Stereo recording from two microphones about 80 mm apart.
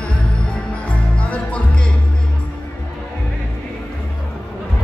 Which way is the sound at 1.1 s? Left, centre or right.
Centre.